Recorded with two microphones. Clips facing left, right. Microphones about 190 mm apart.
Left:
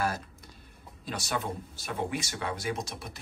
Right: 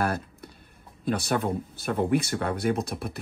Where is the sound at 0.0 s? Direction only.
60° right (ahead or behind).